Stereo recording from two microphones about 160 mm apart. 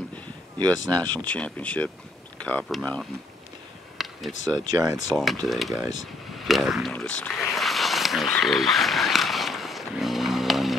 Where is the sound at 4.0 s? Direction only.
Centre (ahead or behind).